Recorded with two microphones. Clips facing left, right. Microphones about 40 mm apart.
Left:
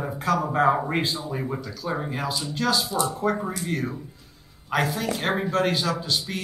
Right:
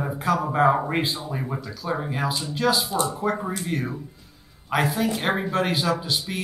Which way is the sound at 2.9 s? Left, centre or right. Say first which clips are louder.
Right 1 dB; right.